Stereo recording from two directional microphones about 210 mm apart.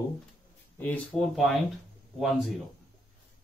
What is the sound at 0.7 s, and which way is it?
Speech, 5° left (ahead or behind).